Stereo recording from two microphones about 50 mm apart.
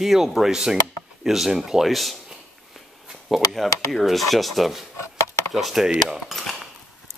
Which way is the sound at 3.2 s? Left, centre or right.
Centre.